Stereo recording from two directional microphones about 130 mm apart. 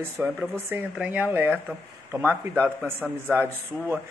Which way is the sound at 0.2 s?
10° right (ahead or behind).